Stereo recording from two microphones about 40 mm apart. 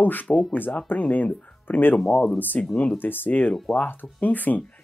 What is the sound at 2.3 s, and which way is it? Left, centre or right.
Speech, left.